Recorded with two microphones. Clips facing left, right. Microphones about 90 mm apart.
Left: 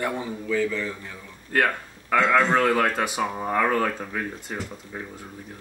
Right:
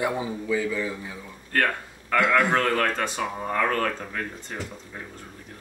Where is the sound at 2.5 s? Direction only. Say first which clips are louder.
Left 2 dB; 10° left (ahead or behind).